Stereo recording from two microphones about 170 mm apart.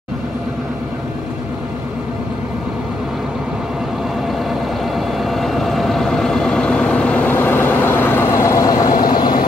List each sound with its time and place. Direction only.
4.5 s vehicle: centre (ahead or behind); by 9.4 s 25° left (ahead or behind)